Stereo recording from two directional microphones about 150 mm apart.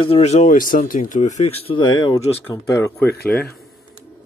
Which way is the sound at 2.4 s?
15° left (ahead or behind).